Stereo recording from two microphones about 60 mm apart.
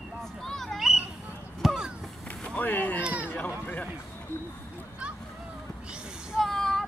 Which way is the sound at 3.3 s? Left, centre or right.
Left.